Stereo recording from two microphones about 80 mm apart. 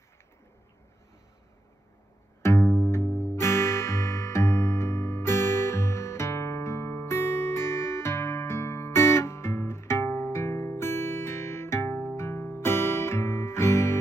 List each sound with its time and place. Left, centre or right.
2.4 s music: left